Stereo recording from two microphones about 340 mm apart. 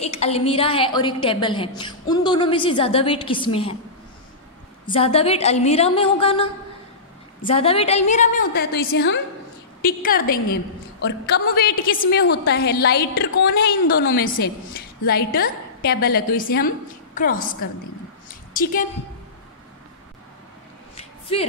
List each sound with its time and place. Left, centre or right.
0.0 s a woman's voice: centre
4.8 s a woman's voice: centre
20.9 s a sound: centre